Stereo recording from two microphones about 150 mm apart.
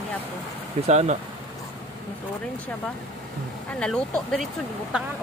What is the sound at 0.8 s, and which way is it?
Speech, 50° right (ahead or behind).